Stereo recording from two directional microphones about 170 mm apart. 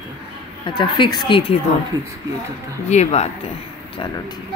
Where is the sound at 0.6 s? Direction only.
30° left (ahead or behind).